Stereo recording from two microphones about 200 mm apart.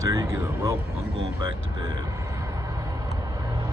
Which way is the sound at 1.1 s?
25° right (ahead or behind).